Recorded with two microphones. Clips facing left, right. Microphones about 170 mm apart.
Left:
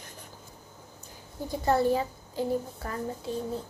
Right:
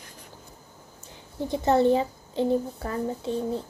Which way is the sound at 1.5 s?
25° right (ahead or behind).